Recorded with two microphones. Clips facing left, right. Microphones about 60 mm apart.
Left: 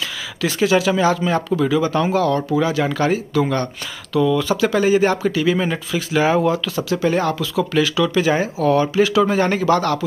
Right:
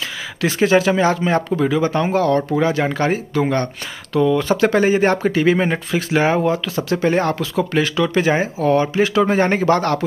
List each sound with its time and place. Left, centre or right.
0.4 s speech: right